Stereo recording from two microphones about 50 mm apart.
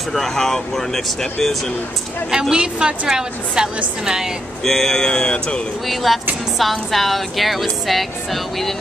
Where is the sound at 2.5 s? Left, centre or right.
Centre.